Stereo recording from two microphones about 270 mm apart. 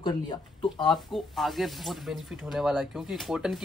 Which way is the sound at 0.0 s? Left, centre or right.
Centre.